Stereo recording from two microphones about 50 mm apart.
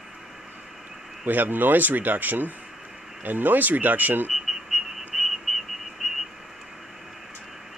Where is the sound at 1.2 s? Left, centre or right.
Right.